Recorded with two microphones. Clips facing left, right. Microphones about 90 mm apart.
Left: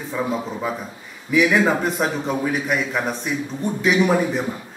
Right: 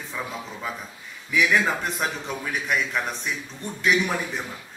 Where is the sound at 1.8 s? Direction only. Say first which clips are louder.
Left 6 dB; 10° left (ahead or behind).